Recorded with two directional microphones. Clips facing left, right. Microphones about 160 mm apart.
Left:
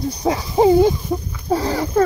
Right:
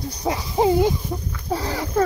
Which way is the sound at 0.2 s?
25° left (ahead or behind).